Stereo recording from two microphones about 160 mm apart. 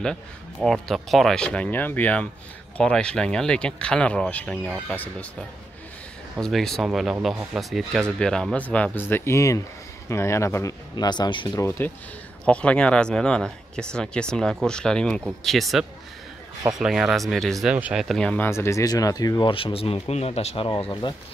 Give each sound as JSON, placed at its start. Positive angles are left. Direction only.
{"t": 0.6, "sound": "speech", "side_deg": 0}
{"t": 4.6, "sound": "speech", "side_deg": -5}
{"t": 6.3, "sound": "speech", "side_deg": 0}
{"t": 12.4, "sound": "speech", "side_deg": 5}